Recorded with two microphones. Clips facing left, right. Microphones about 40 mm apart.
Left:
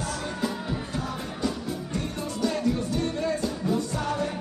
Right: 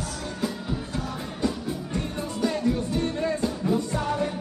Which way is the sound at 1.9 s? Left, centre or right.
Centre.